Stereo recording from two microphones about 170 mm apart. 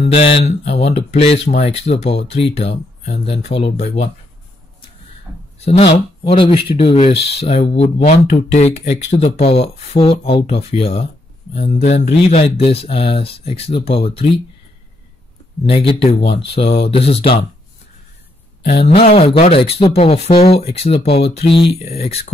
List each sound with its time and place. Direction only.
0.0 s speech: 35° left (ahead or behind)
5.6 s speech: 40° left (ahead or behind)
15.9 s speech: 35° left (ahead or behind)
18.7 s speech: 35° left (ahead or behind)